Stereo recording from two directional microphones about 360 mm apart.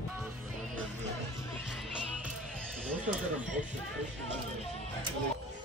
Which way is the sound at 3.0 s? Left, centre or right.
Right.